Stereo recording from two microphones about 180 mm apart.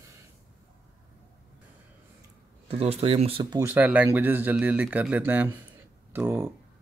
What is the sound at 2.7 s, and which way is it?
Speech, 35° right (ahead or behind).